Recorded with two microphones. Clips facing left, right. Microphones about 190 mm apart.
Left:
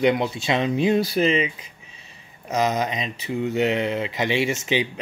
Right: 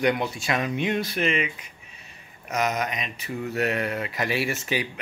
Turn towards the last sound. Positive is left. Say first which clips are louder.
# left 4 dB
turn(degrees=20)  # may be behind; listen again after turning